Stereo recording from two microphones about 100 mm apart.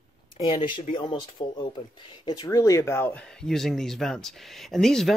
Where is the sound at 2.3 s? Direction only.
40° left (ahead or behind); by 3.2 s 20° left (ahead or behind).